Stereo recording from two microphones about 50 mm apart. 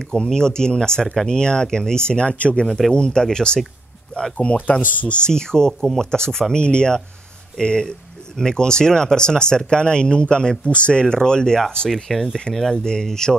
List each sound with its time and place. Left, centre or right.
0.1 s speech: centre
5.7 s speech: centre
5.9 s speech: centre
11.9 s speech: centre
12.7 s speech: centre